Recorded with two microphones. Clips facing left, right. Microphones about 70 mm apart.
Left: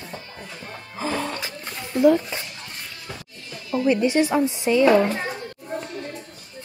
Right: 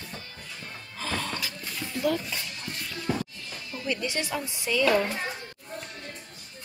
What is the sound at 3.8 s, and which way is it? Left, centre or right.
Speech, left.